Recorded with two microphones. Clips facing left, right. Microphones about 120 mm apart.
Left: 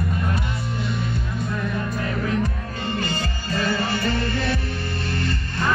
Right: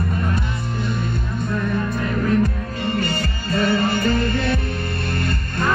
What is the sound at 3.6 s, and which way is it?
Music, 45° right (ahead or behind).